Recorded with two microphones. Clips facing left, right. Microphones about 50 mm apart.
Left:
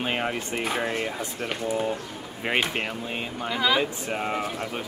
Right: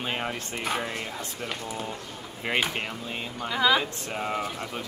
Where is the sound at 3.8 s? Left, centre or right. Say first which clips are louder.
Left 4 dB; centre.